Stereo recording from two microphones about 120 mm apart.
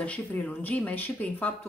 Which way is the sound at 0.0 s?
10° left (ahead or behind).